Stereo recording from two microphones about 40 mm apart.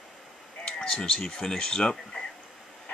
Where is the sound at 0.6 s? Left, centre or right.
Centre.